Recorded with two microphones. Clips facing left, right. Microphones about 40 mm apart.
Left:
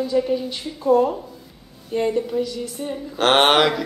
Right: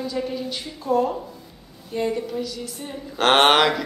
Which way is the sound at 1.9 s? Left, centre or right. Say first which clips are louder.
Left 4 dB; centre.